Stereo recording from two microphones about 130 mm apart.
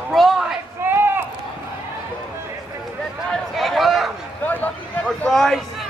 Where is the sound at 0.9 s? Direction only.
20° right (ahead or behind).